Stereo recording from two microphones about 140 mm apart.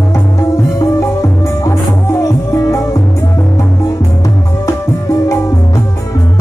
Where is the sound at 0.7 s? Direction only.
20° left (ahead or behind).